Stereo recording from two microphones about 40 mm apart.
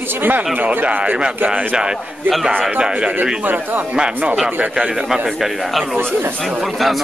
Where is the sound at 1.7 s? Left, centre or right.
Centre.